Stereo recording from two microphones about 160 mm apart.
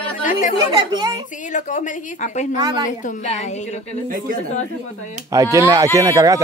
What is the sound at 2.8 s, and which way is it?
A woman's voice, 50° left (ahead or behind).